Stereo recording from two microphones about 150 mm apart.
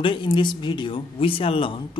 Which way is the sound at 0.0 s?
35° left (ahead or behind).